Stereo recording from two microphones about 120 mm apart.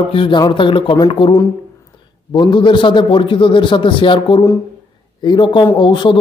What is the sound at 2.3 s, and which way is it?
A man's voice, 40° left (ahead or behind).